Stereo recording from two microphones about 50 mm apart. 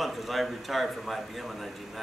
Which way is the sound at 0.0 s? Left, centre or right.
Centre.